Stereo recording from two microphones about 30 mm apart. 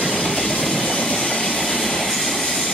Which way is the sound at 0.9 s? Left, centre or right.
Left.